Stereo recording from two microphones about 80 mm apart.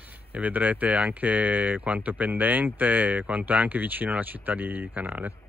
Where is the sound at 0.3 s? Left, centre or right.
Centre.